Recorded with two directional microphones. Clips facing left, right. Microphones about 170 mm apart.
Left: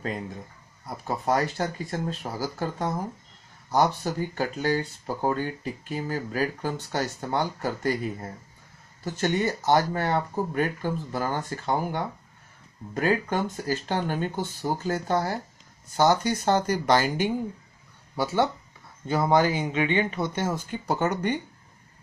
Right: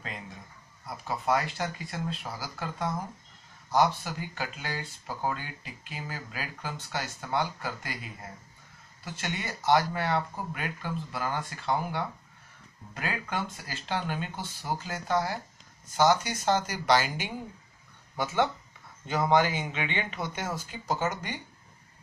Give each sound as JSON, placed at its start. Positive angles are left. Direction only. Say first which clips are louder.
{"t": 0.8, "sound": "speech", "louder": "left 3 dB", "side_deg": 40}
{"t": 16.4, "sound": "speech", "louder": "left 2 dB", "side_deg": 50}
{"t": 18.1, "sound": "speech", "louder": "left 3 dB", "side_deg": 35}